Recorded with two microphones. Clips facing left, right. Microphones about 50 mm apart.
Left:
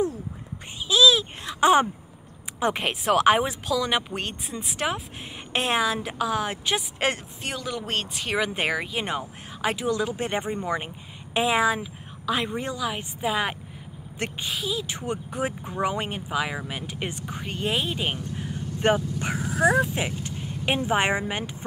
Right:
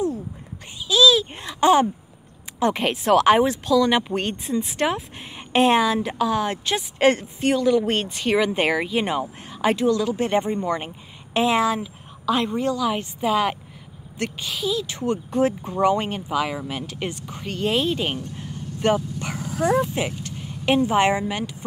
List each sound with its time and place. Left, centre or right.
0.8 s a sound: centre
1.4 s a woman's voice: centre
9.8 s a woman's voice: centre
12.8 s speech: centre
14.1 s a woman's voice: left
14.5 s speech: centre
19.1 s speech: left
19.6 s speech: centre
19.9 s a woman's voice: centre
20.2 s vehicle: centre
20.9 s speech: centre